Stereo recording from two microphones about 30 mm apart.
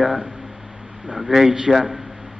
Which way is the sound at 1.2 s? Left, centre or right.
Centre.